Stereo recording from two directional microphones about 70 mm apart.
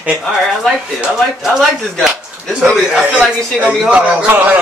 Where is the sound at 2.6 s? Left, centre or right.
Centre.